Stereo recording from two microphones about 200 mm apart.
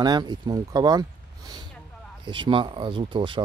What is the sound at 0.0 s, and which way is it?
Speech, 20° right (ahead or behind).